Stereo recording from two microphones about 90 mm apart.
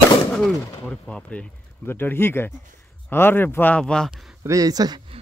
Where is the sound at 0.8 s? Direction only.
10° left (ahead or behind).